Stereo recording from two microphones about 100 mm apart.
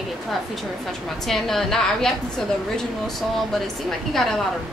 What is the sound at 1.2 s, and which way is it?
A woman's voice, 5° left (ahead or behind).